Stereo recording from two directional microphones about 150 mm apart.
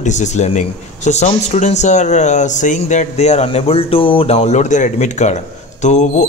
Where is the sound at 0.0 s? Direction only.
55° left (ahead or behind).